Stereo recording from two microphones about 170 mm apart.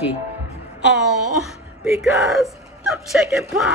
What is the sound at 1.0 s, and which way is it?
Speech, centre (ahead or behind).